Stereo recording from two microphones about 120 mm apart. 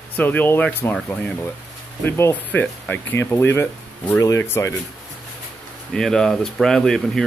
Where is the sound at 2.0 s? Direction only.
20° left (ahead or behind).